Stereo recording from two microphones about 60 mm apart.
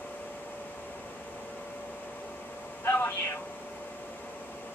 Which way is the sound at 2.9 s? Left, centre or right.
Left.